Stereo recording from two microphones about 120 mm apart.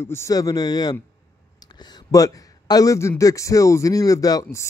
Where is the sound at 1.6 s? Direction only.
35° left (ahead or behind).